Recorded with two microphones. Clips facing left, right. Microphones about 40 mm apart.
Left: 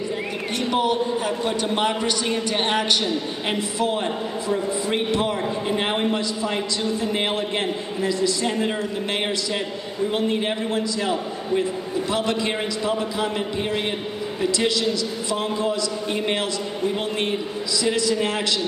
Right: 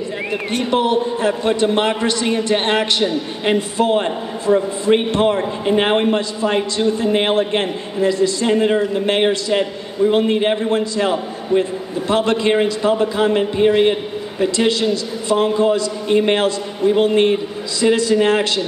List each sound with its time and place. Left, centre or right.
0.5 s a man's voice: right
2.2 s a man's voice: right
11.0 s a man's voice: right